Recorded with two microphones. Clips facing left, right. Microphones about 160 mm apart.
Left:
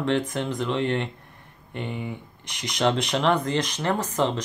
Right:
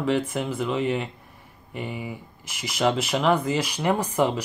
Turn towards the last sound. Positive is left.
turn(degrees=-10)  # may be behind; listen again after turning